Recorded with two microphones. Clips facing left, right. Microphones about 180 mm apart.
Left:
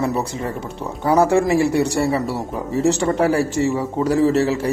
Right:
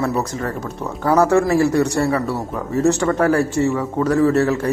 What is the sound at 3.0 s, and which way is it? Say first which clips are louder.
A man's voice: right 1 dB; 20° left (ahead or behind).